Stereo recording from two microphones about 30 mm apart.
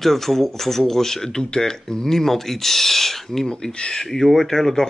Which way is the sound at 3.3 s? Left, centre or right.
Left.